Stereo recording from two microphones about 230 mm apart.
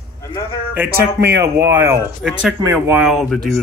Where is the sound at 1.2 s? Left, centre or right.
Centre.